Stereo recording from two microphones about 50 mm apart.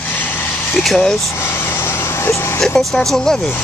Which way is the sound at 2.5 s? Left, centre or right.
Centre.